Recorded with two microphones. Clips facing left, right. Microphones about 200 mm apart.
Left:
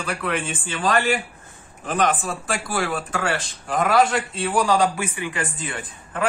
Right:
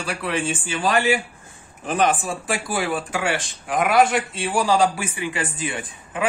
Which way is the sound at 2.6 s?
25° right (ahead or behind).